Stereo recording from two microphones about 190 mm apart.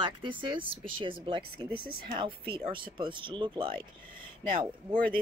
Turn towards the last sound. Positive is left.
turn(degrees=-25)  # may be behind; listen again after turning